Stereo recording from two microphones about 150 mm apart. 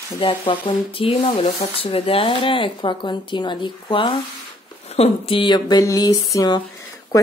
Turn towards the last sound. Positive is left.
turn(degrees=25)  # may be behind; listen again after turning